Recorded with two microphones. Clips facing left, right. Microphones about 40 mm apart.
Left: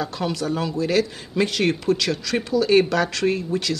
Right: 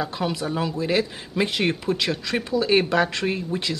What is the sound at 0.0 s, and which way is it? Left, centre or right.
Speech, centre.